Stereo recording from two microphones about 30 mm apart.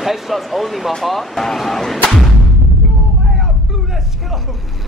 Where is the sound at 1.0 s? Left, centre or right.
Centre.